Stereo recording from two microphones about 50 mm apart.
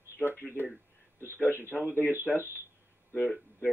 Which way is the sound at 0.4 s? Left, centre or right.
Left.